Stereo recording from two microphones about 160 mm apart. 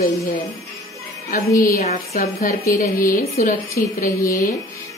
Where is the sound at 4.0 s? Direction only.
20° left (ahead or behind).